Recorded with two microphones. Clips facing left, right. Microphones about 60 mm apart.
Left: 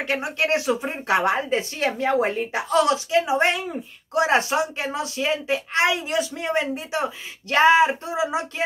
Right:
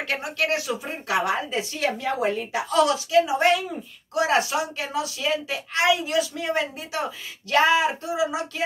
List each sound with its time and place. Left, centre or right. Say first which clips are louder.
0.0 s speech: left 2 dB; left